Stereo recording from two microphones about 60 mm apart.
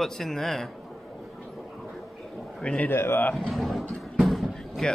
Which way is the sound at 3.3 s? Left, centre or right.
Centre.